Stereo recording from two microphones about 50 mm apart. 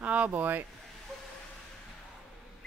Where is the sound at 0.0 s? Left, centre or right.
Right.